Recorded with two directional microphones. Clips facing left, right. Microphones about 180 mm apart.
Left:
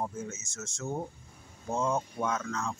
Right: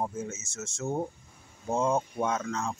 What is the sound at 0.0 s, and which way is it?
Speech, 25° right (ahead or behind).